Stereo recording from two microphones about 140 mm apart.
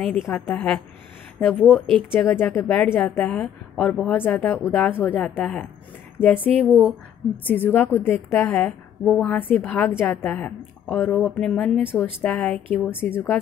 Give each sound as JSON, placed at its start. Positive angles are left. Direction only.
{"t": 0.0, "sound": "a woman's voice", "side_deg": 5}
{"t": 2.3, "sound": "a woman's voice", "side_deg": 15}
{"t": 6.6, "sound": "a woman's voice", "side_deg": -5}
{"t": 7.4, "sound": "a woman's voice", "side_deg": 15}